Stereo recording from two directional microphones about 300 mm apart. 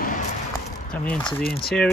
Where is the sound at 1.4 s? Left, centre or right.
Left.